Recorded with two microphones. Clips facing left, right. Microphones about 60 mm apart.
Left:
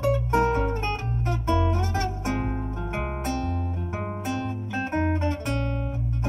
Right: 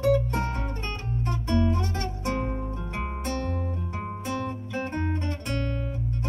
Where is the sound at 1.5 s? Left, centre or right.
Left.